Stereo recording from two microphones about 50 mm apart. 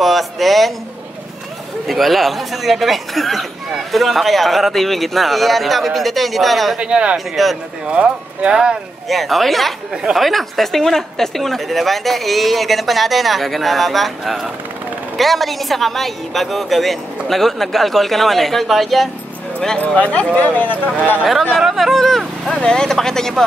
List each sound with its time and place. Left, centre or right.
0.0 s speech: centre
1.9 s speech: centre
6.8 s speech: centre
7.4 s speech: centre
7.8 s speech: right
9.1 s speech: centre
20.0 s speech: left
21.5 s speech: centre
22.5 s speech: centre